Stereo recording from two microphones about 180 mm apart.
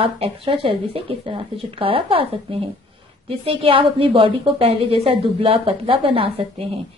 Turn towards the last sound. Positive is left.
turn(degrees=-30)  # may be behind; listen again after turning